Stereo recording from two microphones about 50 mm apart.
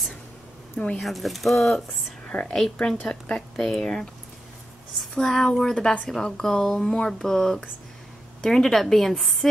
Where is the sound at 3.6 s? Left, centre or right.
Centre.